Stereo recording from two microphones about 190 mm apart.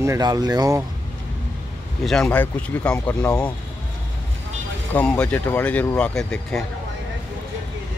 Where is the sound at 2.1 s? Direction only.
5° left (ahead or behind).